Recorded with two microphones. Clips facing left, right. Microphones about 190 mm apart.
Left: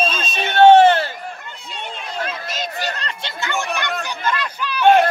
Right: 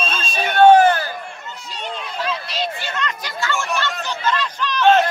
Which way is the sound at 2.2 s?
50° left (ahead or behind).